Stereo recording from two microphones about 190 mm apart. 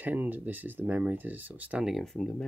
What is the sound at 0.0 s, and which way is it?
Speech, 10° right (ahead or behind).